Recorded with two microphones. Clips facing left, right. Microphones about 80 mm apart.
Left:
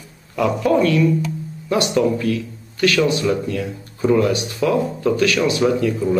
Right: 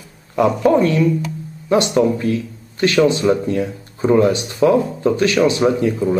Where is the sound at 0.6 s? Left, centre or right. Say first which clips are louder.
Even; right.